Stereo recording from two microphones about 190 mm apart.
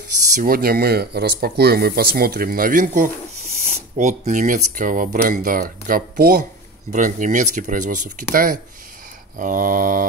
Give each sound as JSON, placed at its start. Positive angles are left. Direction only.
{"t": 0.3, "sound": "speech", "side_deg": -45}